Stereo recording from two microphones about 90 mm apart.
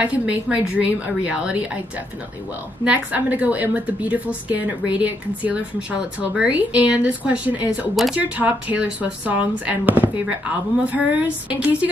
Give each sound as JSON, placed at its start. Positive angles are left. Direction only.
{"t": 0.0, "sound": "a woman's voice", "side_deg": -15}
{"t": 2.8, "sound": "a woman's voice", "side_deg": -15}
{"t": 7.9, "sound": "speech", "side_deg": 0}
{"t": 8.2, "sound": "a woman's voice", "side_deg": -20}